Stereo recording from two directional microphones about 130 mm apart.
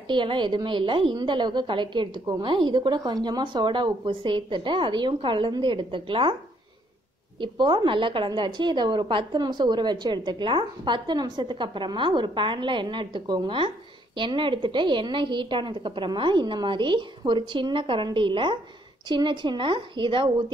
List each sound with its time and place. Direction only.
0.1 s a woman's voice: 40° right (ahead or behind)
7.3 s a woman's voice: 35° right (ahead or behind)